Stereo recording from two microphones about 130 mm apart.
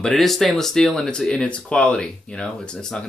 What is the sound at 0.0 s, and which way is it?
Speech, centre (ahead or behind).